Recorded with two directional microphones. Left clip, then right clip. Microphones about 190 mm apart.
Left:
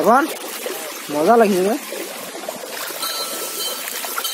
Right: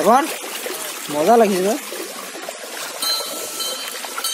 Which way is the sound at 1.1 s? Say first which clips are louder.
Even; 5° right (ahead or behind).